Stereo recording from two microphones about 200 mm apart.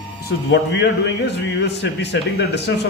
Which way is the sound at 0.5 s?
55° left (ahead or behind).